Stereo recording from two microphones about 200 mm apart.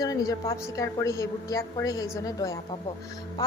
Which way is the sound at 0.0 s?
20° left (ahead or behind).